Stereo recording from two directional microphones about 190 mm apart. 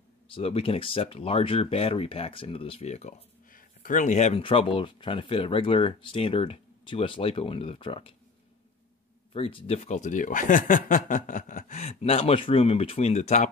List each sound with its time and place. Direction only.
0.3 s speech: 30° left (ahead or behind)
9.3 s speech: 30° left (ahead or behind)